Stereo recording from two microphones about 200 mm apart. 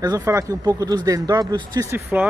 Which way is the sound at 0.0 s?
15° right (ahead or behind).